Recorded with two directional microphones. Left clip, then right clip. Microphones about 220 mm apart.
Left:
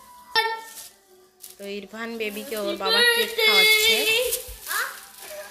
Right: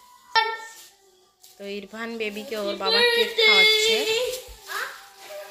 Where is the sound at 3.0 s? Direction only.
40° left (ahead or behind).